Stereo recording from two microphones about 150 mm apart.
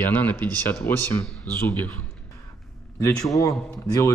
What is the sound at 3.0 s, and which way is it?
Speech, 20° left (ahead or behind).